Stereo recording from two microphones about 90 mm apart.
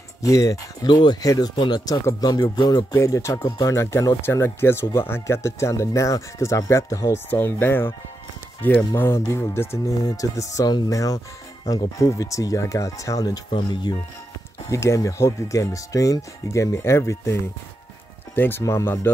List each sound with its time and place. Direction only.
0.2 s speech: 40° left (ahead or behind)
2.4 s music: 55° left (ahead or behind)
2.9 s speech: 35° left (ahead or behind)
7.2 s speech: 25° left (ahead or behind); by 13.4 s 40° left (ahead or behind)
14.7 s speech: 35° left (ahead or behind)
18.3 s speech: 25° left (ahead or behind)
18.6 s speech: 35° left (ahead or behind)